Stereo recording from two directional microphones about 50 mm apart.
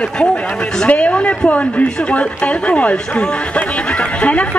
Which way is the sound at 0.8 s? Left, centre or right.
Left.